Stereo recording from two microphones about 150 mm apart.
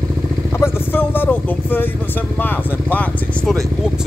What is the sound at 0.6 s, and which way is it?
Vehicle, 15° left (ahead or behind).